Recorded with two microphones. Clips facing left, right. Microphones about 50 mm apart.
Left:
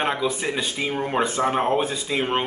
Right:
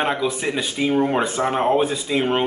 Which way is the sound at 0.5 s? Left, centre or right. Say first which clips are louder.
Right 4 dB; centre.